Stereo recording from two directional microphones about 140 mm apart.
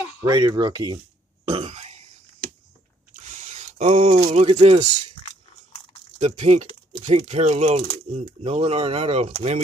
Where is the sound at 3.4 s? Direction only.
60° right (ahead or behind).